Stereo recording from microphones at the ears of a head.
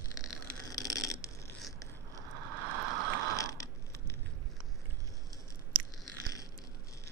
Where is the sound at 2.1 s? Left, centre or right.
Right.